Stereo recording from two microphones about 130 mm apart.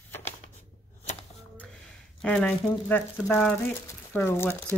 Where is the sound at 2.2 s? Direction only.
10° left (ahead or behind).